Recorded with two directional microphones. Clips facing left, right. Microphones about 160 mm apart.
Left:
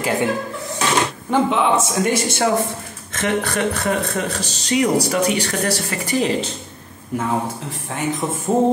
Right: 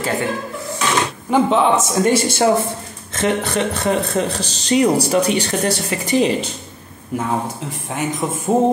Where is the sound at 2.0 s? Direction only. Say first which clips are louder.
Right 6 dB; 30° right (ahead or behind).